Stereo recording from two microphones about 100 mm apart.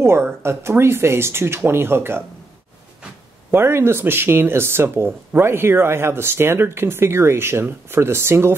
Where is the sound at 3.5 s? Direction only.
25° right (ahead or behind).